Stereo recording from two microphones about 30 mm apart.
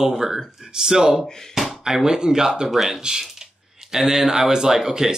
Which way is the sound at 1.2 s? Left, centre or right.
Centre.